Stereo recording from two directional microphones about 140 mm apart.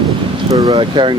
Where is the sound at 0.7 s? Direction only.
35° right (ahead or behind).